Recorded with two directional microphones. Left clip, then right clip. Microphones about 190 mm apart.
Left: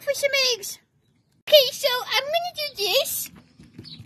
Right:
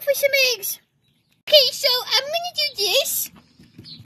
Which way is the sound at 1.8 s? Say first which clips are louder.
Right 3 dB; 15° right (ahead or behind).